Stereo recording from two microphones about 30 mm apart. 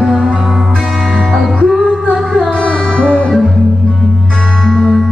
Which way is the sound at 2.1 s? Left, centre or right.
Centre.